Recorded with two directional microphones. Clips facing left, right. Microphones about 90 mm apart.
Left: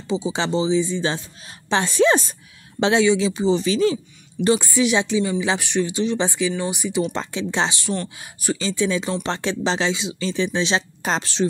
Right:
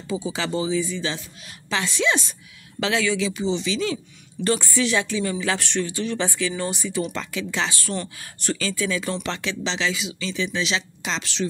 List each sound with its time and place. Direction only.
0.1 s speech: 25° left (ahead or behind); by 2.3 s 40° left (ahead or behind)
2.8 s speech: 25° left (ahead or behind)
4.5 s speech: 15° left (ahead or behind)
7.1 s speech: 30° left (ahead or behind)